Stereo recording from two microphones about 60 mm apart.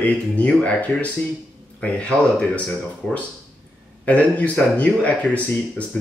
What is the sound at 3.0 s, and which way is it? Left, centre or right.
Speech, centre.